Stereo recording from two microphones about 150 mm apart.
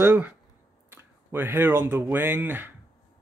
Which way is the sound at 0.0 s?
15° right (ahead or behind).